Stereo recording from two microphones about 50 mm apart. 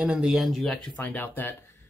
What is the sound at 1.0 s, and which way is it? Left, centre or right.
Speech, left.